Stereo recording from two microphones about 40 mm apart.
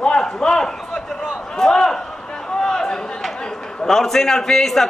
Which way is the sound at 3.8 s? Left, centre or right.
Centre.